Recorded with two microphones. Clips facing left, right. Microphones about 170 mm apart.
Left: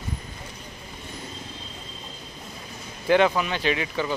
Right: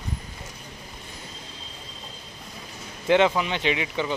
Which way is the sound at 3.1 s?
20° right (ahead or behind).